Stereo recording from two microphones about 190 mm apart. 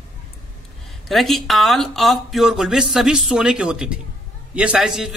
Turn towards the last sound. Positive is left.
turn(degrees=-5)  # may be behind; listen again after turning